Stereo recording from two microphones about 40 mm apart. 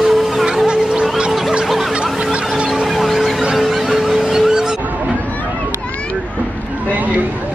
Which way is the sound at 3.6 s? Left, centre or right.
Centre.